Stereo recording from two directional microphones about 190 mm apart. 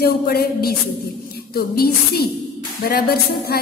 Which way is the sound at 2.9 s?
55° left (ahead or behind).